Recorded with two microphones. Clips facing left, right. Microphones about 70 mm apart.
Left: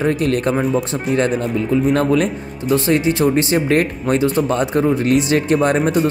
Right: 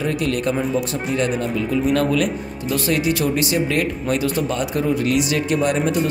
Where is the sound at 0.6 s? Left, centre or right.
Centre.